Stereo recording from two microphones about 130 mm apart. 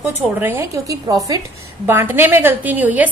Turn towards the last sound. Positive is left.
turn(degrees=-10)  # may be behind; listen again after turning